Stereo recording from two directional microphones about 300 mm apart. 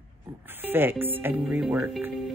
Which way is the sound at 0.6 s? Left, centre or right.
Centre.